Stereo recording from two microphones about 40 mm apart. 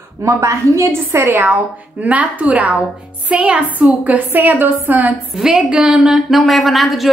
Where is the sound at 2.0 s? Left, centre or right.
Right.